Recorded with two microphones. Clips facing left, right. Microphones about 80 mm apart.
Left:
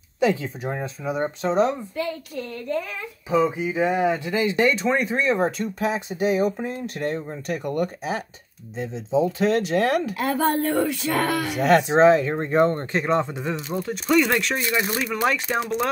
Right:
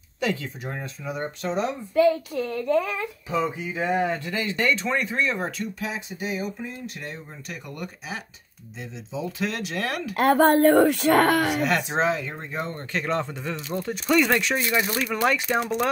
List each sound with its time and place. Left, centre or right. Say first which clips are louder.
0.2 s speech: left 6 dB; left
3.3 s speech: left 7 dB; centre
5.8 s speech: left 8 dB; left
10.1 s speech: right 4 dB; right
11.6 s speech: left 8 dB; left
12.9 s speech: left 4 dB; centre
13.8 s speech: left 1 dB; centre